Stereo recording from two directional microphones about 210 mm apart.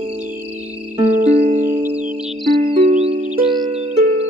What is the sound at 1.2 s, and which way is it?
Music, 30° right (ahead or behind).